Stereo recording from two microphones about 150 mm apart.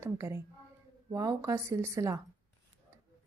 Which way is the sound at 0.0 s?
20° right (ahead or behind).